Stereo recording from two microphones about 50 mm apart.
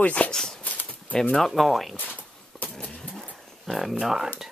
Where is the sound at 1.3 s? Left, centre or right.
Centre.